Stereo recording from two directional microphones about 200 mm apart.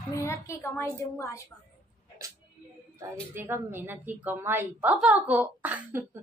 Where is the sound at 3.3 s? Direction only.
10° right (ahead or behind).